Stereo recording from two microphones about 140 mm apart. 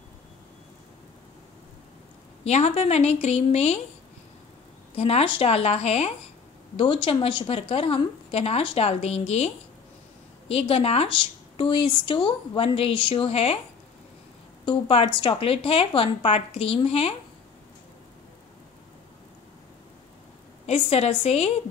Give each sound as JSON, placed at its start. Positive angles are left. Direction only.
{"t": 2.4, "sound": "a woman's voice", "side_deg": 50}
{"t": 4.9, "sound": "a woman's voice", "side_deg": 45}
{"t": 10.5, "sound": "speech", "side_deg": 45}
{"t": 14.6, "sound": "speech", "side_deg": 35}
{"t": 20.6, "sound": "a woman's voice", "side_deg": 45}